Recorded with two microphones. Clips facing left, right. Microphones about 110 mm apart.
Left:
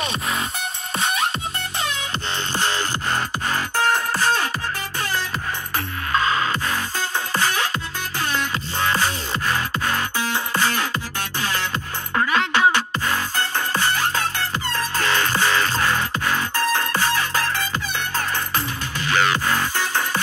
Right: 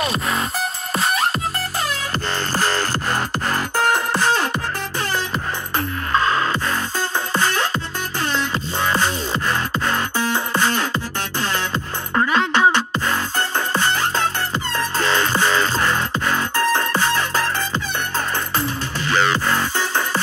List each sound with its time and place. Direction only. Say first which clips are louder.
0.0 s music: right 3 dB; 35° right (ahead or behind)
1.8 s music: right 1 dB; 40° right (ahead or behind)
3.7 s music: right 2 dB; 5° right (ahead or behind)
5.8 s music: right 3 dB; centre (ahead or behind)
11.3 s music: right 2 dB; 5° left (ahead or behind)
15.0 s music: right 2 dB; centre (ahead or behind)
19.0 s music: right 1 dB; 5° left (ahead or behind)